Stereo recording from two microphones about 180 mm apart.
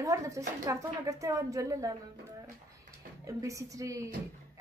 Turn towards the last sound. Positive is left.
turn(degrees=-20)  # may be behind; listen again after turning